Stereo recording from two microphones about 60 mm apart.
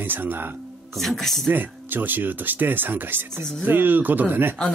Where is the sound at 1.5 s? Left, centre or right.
Right.